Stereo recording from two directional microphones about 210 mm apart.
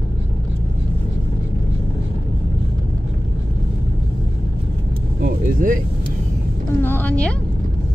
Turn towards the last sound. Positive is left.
turn(degrees=5)  # may be behind; listen again after turning